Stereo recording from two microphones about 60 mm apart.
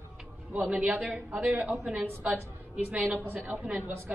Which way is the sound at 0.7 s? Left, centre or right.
Right.